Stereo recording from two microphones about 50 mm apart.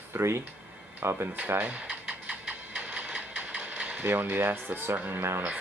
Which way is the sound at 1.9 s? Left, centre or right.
Right.